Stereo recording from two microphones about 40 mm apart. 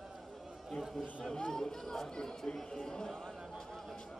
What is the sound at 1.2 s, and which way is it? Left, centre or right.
Speech, left.